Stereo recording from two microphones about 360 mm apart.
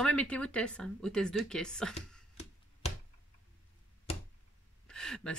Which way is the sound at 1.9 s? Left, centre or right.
Centre.